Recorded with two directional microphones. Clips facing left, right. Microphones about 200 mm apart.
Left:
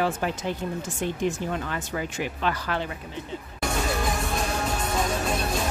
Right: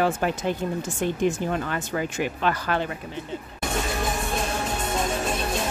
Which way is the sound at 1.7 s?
55° right (ahead or behind).